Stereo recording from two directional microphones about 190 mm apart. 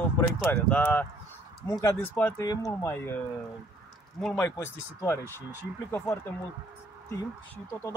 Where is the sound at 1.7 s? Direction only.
15° left (ahead or behind).